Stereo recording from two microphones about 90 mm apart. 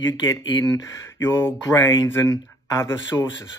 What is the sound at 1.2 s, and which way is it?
Speech, 25° left (ahead or behind).